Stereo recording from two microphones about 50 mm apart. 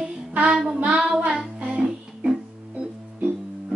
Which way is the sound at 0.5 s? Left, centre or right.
Centre.